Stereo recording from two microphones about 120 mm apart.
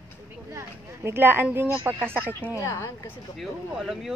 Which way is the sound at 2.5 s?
25° left (ahead or behind).